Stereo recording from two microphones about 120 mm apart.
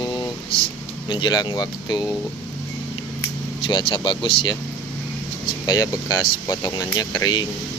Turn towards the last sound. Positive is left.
turn(degrees=35)  # may be behind; listen again after turning